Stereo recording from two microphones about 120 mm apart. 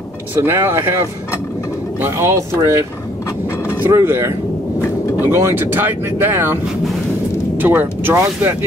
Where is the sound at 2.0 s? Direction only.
20° right (ahead or behind).